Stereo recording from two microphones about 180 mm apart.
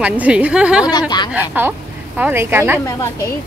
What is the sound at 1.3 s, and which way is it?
A woman's voice, 10° right (ahead or behind).